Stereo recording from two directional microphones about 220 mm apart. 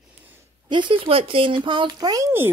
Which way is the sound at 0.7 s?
20° right (ahead or behind).